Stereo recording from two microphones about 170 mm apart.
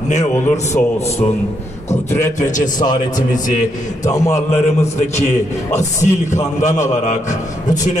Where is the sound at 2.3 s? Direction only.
50° left (ahead or behind).